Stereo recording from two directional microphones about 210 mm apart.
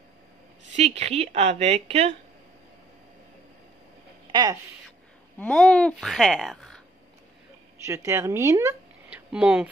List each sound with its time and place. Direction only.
0.7 s a woman's voice: 30° right (ahead or behind)
4.3 s speech: 20° right (ahead or behind)
5.4 s speech: 5° left (ahead or behind)
7.8 s speech: 15° right (ahead or behind)